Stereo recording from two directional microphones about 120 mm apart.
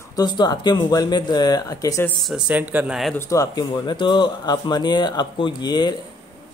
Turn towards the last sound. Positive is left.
turn(degrees=35)  # may be behind; listen again after turning